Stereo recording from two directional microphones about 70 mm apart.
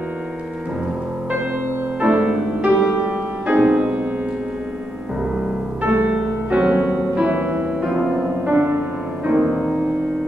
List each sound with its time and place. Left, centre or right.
2.0 s music: right
5.9 s music: right
8.5 s music: right
9.3 s music: centre